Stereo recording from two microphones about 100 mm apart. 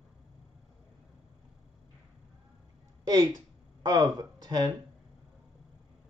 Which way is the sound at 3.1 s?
40° right (ahead or behind).